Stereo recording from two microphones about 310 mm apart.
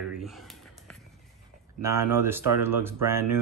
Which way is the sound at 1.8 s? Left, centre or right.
Centre.